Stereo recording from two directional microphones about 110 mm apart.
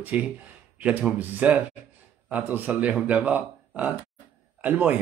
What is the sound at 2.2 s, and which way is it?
A man's voice, 15° right (ahead or behind).